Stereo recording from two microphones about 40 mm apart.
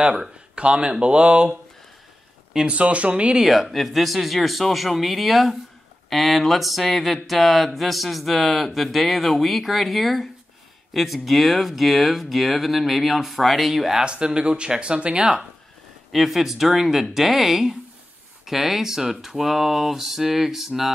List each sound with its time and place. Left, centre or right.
0.0 s speech: right
2.8 s speech: right
3.3 s speech: centre
14.0 s speech: right
16.1 s speech: centre